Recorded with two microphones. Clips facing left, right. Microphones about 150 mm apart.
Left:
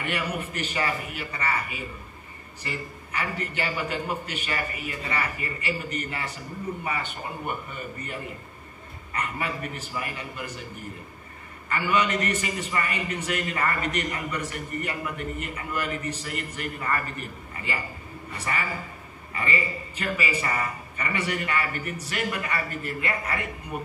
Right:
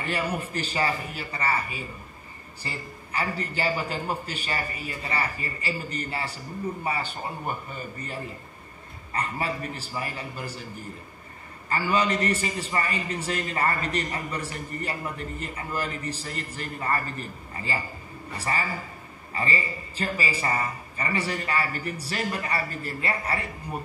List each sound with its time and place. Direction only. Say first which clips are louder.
0.0 s a man's voice: right 1 dB; 35° right (ahead or behind)
11.7 s a man's voice: even; 35° right (ahead or behind)